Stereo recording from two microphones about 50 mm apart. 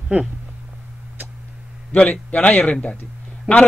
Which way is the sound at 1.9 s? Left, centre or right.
Left.